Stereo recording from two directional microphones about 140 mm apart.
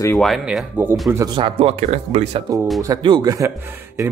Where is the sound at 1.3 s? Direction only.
40° right (ahead or behind).